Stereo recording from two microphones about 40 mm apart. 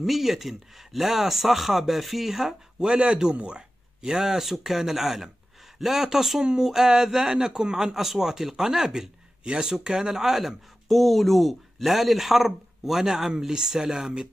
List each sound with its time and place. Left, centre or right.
0.0 s speech: centre
2.9 s speech: right; by 10.6 s centre
10.9 s speech: centre